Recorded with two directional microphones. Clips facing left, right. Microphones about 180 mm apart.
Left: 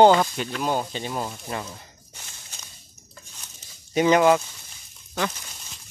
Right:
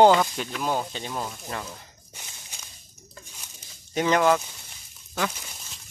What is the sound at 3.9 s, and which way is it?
Speech, 10° left (ahead or behind).